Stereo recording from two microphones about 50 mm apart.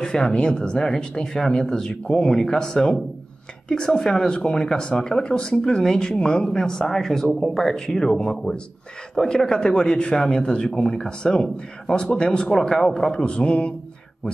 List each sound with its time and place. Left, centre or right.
0.0 s a man's voice: centre